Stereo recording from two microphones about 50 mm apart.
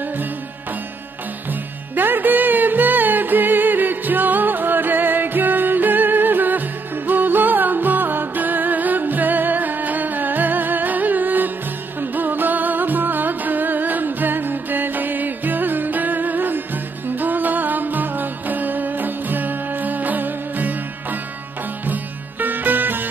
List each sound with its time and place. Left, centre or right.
1.5 s music: right
21.8 s sitar: right